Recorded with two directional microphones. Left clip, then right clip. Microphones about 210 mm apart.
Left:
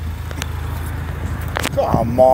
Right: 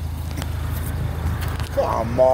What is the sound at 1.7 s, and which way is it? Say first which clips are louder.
Speech: left 3 dB; 15° left (ahead or behind).